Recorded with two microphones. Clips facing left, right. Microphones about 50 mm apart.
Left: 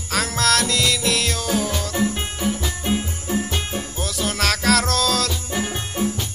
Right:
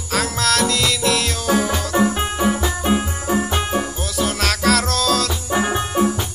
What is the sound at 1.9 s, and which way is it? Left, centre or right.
Music, right.